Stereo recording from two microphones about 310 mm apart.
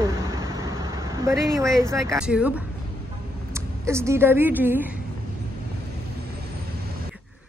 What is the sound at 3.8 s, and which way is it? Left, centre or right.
Speech, centre.